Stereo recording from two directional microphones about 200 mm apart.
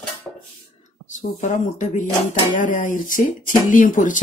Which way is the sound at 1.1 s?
40° left (ahead or behind).